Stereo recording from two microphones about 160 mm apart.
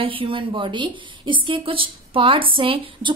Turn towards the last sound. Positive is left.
turn(degrees=-35)  # may be behind; listen again after turning